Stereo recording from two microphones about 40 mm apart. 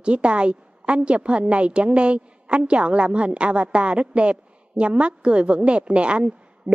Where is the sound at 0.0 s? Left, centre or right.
Right.